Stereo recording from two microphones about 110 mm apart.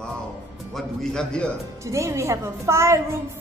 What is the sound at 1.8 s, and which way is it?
A woman's voice, 25° right (ahead or behind).